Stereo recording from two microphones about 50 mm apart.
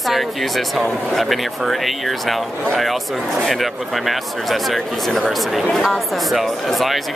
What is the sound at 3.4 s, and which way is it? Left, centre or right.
Speech, centre.